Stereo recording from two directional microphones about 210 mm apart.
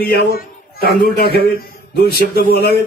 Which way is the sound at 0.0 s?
45° left (ahead or behind).